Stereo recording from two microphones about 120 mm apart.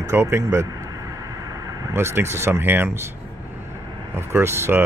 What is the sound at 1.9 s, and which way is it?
Speech, 20° right (ahead or behind).